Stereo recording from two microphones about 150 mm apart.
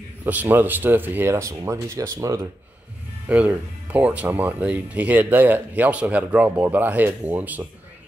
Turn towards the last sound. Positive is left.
turn(degrees=-10)  # may be behind; listen again after turning